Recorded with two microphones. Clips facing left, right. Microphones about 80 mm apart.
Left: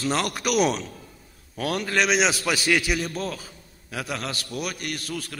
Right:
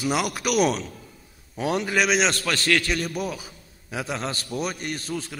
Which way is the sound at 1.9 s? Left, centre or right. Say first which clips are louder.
Left 2 dB; centre.